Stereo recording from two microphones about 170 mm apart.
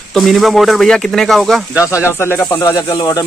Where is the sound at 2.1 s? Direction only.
15° left (ahead or behind).